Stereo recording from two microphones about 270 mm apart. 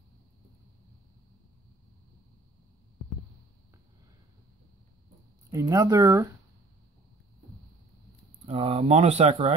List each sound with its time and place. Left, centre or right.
5.5 s speech: centre
8.5 s speech: right